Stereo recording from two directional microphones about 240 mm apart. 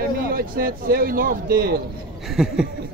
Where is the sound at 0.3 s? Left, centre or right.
Right.